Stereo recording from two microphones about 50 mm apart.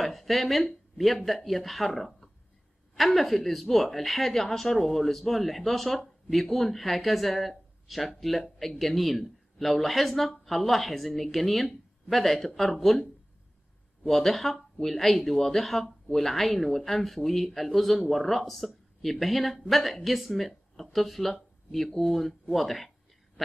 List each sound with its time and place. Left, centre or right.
0.0 s a woman's voice: centre
14.0 s a woman's voice: centre